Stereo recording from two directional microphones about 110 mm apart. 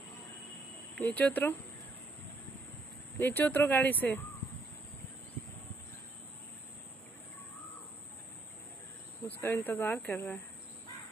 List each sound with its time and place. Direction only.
0.9 s speech: 15° left (ahead or behind)
3.2 s speech: 15° left (ahead or behind)
9.2 s speech: 20° left (ahead or behind)